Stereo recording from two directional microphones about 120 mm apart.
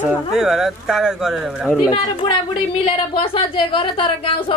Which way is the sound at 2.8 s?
50° left (ahead or behind).